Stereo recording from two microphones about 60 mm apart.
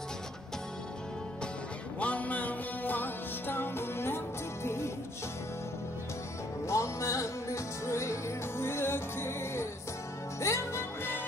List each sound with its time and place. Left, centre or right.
2.0 s music: left
6.7 s music: left